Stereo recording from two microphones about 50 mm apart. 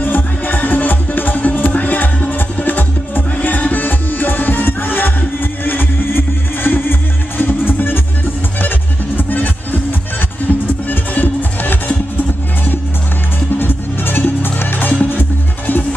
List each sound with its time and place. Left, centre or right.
0.0 s music: left
10.5 s music: left
13.6 s music: left